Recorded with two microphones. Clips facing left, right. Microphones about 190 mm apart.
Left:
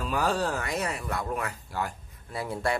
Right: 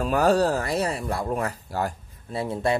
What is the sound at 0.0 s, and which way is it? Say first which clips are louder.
Speech: right 7 dB; 45° right (ahead or behind).